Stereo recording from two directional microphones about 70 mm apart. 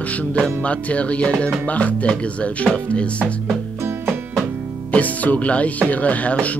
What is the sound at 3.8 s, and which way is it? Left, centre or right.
Music, right.